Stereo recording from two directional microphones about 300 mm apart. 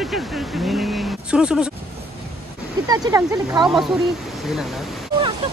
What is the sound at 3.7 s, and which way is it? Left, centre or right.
Speech, centre.